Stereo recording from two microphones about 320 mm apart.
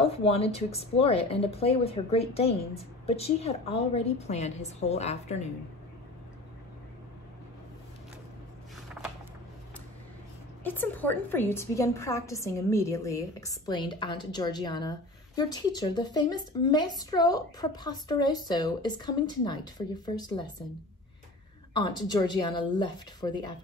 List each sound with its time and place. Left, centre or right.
0.1 s a woman's voice: centre
10.6 s a woman's voice: centre
21.7 s a woman's voice: centre